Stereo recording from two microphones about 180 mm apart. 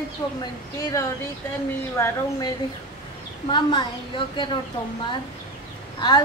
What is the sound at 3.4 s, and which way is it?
Speech, 25° left (ahead or behind).